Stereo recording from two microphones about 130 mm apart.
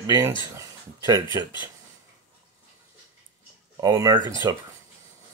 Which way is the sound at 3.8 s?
30° right (ahead or behind).